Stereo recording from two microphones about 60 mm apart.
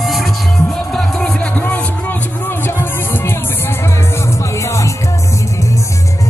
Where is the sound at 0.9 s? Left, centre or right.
Centre.